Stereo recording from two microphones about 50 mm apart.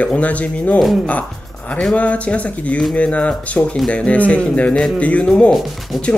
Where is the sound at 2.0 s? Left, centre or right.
Left.